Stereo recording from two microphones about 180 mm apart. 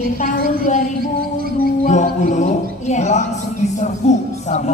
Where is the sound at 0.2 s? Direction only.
45° left (ahead or behind).